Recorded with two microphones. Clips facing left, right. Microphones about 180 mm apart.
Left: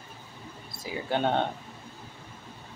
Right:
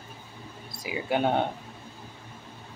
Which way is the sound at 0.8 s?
10° right (ahead or behind).